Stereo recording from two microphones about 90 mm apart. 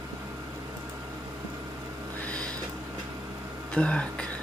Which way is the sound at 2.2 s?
15° left (ahead or behind).